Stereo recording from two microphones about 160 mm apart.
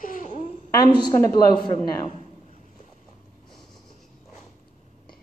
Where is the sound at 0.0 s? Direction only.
55° left (ahead or behind).